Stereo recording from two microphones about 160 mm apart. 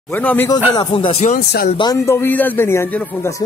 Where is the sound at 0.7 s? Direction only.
30° left (ahead or behind).